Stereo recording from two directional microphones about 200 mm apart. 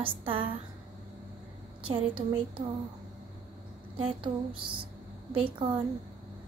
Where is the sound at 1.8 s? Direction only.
25° right (ahead or behind).